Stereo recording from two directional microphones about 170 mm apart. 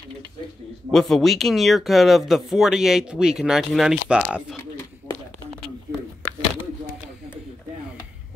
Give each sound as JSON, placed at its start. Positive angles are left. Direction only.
{"t": 0.9, "sound": "speech", "side_deg": 0}